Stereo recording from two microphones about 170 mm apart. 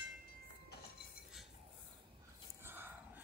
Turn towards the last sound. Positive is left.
turn(degrees=-10)  # may be behind; listen again after turning